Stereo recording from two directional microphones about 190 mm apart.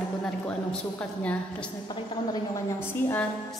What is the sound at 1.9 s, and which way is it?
A woman's voice, 20° left (ahead or behind).